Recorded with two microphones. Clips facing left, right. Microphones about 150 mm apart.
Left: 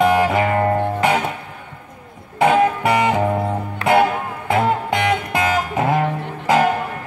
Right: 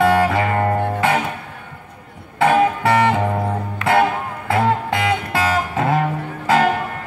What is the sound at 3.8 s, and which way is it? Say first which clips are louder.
Music: left 2 dB; 35° left (ahead or behind).